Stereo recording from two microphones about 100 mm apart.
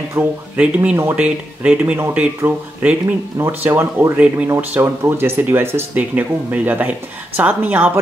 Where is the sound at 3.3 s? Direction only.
25° right (ahead or behind).